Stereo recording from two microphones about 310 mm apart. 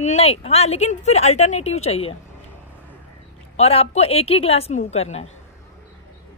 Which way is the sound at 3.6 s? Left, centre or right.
Centre.